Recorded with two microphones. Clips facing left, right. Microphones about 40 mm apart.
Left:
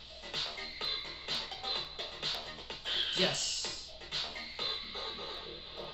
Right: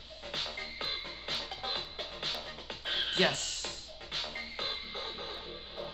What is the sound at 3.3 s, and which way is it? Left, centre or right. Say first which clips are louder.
Music: right 1 dB; right.